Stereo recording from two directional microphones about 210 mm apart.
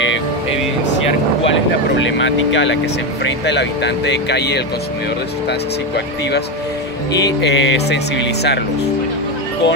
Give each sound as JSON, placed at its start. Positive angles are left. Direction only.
{"t": 2.1, "sound": "speech", "side_deg": 60}
{"t": 7.4, "sound": "speech", "side_deg": 60}